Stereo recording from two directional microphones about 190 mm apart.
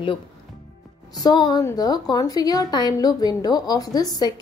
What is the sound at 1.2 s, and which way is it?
A woman's voice, 20° left (ahead or behind).